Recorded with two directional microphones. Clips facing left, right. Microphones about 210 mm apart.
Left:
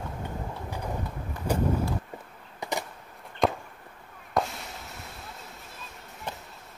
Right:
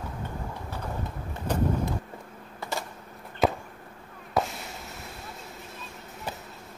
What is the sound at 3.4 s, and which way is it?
Chop, 5° right (ahead or behind).